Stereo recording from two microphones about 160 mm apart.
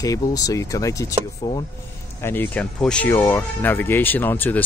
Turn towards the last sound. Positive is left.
turn(degrees=10)  # may be behind; listen again after turning